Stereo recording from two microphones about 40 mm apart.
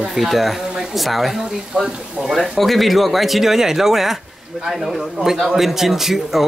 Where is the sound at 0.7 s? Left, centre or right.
Centre.